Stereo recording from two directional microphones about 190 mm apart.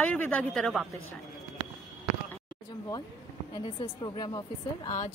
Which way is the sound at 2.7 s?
20° left (ahead or behind).